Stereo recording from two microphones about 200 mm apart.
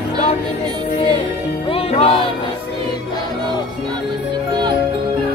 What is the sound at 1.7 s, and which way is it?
Music, 30° left (ahead or behind).